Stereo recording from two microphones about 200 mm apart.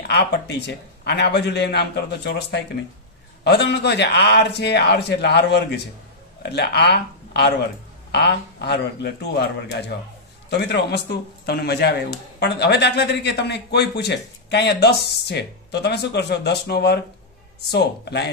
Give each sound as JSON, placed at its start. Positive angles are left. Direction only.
{"t": 0.1, "sound": "a man's voice", "side_deg": 55}